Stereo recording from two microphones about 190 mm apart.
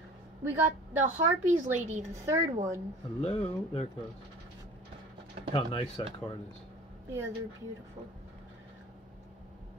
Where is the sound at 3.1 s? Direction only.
35° left (ahead or behind).